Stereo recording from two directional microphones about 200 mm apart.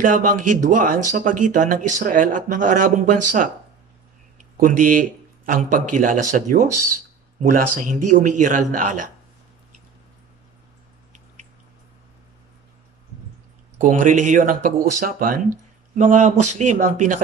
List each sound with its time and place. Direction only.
0.0 s speech: 40° right (ahead or behind)
4.6 s speech: 40° right (ahead or behind)
13.7 s speech: 40° right (ahead or behind)